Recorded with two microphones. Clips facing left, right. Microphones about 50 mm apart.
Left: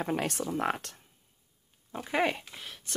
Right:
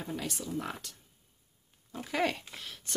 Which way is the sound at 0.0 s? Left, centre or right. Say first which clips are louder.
Left 7 dB; left.